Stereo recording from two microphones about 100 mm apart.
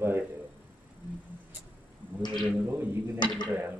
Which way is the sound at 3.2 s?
50° left (ahead or behind).